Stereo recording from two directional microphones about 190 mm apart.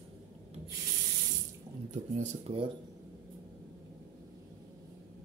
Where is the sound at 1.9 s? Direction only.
40° right (ahead or behind).